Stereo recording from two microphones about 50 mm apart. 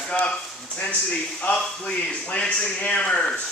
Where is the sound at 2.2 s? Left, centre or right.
Left.